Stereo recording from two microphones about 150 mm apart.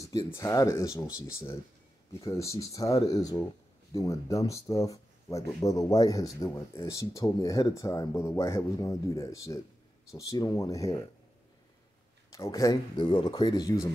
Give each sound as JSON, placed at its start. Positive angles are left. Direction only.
{"t": 0.0, "sound": "speech", "side_deg": 25}
{"t": 2.1, "sound": "speech", "side_deg": 20}
{"t": 12.3, "sound": "speech", "side_deg": 20}